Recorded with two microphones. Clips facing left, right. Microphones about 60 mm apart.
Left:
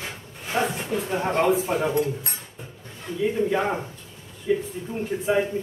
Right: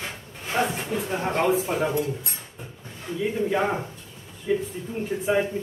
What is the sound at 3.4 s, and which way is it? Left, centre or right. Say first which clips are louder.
Speech: even; centre.